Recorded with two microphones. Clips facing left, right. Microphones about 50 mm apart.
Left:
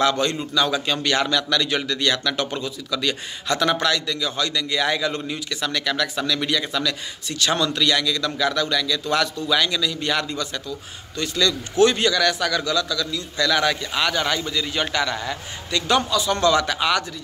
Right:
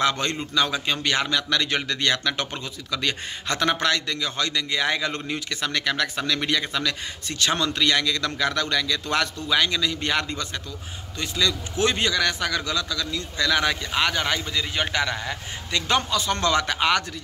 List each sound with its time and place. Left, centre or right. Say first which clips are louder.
0.0 s a man's voice: left 3 dB; right
11.1 s a man's voice: left 3 dB; centre
15.7 s a man's voice: left 3 dB; right